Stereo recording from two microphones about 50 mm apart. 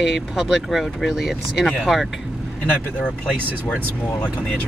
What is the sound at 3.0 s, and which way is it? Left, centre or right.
Speech, centre.